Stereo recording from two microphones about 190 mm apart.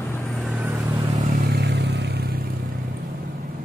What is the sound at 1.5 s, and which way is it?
Vehicle, 60° right (ahead or behind).